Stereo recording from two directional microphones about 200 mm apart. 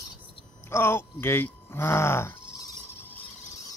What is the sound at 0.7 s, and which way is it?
Speech, 10° left (ahead or behind).